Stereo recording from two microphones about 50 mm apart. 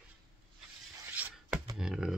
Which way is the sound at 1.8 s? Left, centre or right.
Centre.